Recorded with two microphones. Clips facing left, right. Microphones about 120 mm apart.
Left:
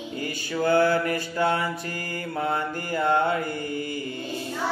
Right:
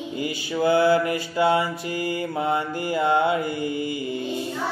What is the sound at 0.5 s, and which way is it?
Mantra, 10° right (ahead or behind).